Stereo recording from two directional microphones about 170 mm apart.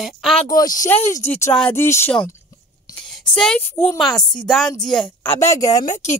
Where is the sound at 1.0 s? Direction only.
40° left (ahead or behind).